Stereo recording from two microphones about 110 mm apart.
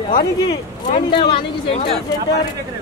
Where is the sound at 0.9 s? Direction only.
50° left (ahead or behind).